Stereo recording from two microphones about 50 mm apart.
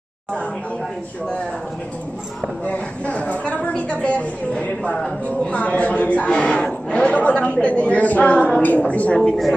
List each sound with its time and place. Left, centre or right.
2.6 s speech: left
6.3 s speech: centre